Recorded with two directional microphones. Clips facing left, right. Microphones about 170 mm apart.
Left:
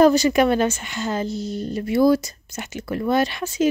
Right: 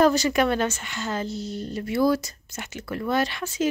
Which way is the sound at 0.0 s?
15° left (ahead or behind).